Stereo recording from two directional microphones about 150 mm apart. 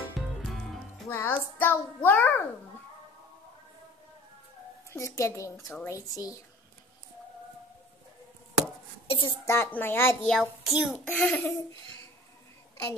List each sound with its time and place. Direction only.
0.4 s music: centre (ahead or behind)
1.0 s a child's voice: 15° left (ahead or behind)
4.9 s a woman's voice: 20° left (ahead or behind)
9.0 s a sound: 40° left (ahead or behind)
9.5 s a child's voice: 15° left (ahead or behind)
10.3 s a child's voice: centre (ahead or behind)